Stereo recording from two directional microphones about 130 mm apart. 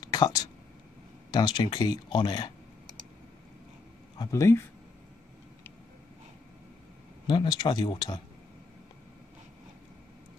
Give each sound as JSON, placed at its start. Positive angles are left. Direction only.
{"t": 0.0, "sound": "a sound", "side_deg": 30}
{"t": 1.3, "sound": "speech", "side_deg": 35}
{"t": 4.2, "sound": "speech", "side_deg": 25}
{"t": 7.2, "sound": "speech", "side_deg": 35}